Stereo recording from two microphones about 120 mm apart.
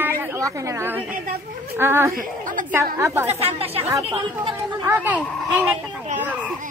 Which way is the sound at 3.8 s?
25° right (ahead or behind).